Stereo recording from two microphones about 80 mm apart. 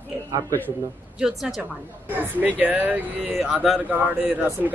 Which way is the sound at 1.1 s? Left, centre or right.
Centre.